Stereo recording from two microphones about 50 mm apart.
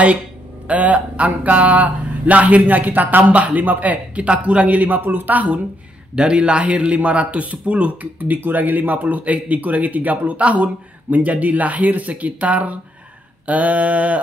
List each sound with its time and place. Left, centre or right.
0.7 s speech: right
6.1 s speech: centre
13.5 s a sound: right